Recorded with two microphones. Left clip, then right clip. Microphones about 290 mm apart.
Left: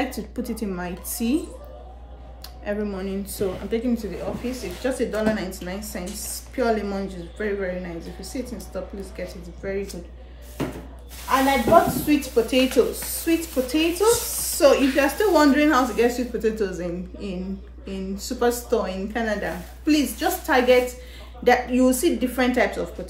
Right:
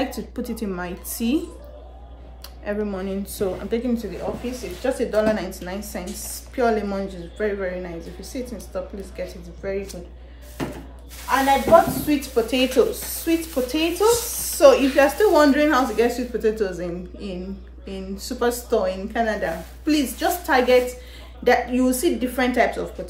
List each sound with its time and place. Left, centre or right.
0.0 s a woman's voice: centre
2.6 s a woman's voice: centre
10.6 s a sound: centre
12.1 s a woman's voice: centre